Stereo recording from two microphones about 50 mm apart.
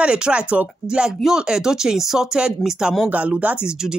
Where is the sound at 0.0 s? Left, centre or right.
Right.